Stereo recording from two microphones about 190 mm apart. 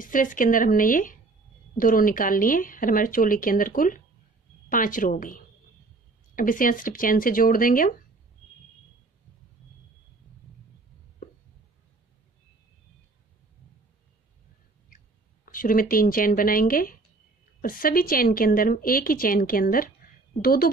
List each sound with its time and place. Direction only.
0.0 s a woman's voice: 45° left (ahead or behind)
11.2 s a sound: 45° left (ahead or behind)
15.4 s a woman's voice: 45° left (ahead or behind)